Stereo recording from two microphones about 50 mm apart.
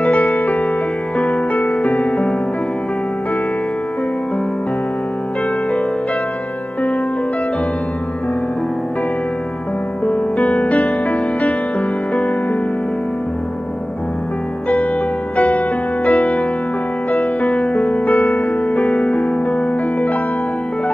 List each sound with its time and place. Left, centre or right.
0.0 s music: left
1.1 s music: centre
10.4 s music: centre
15.5 s music: left
18.4 s music: left
18.9 s music: centre